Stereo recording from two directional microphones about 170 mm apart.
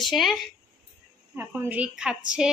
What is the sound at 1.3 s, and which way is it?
A woman's voice, 10° right (ahead or behind).